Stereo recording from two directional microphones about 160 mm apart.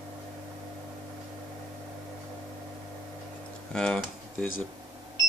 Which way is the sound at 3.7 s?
5° left (ahead or behind).